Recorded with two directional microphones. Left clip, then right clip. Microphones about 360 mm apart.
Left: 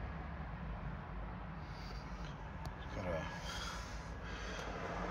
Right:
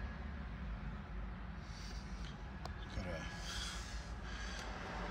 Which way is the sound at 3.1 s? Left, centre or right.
Centre.